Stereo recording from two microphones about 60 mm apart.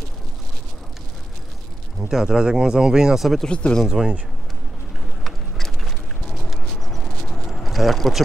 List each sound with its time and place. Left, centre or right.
2.0 s speech: centre
3.4 s speech: centre
3.8 s speech: centre
5.2 s a sound: centre